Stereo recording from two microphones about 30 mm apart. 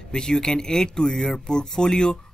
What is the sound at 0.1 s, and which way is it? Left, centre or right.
Speech, left.